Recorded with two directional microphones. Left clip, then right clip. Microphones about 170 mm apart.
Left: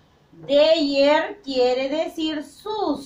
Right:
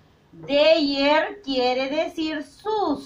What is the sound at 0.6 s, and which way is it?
A woman's voice, 10° left (ahead or behind).